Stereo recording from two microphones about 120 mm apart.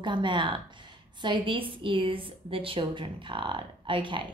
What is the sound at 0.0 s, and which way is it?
A woman's voice, 40° right (ahead or behind).